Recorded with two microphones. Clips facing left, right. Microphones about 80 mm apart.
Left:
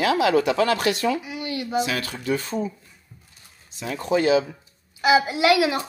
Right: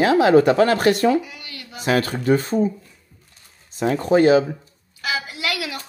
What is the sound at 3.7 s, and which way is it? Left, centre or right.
Speech, right.